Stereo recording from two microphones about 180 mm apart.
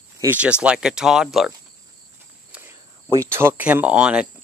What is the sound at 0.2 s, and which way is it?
Speech, 10° right (ahead or behind).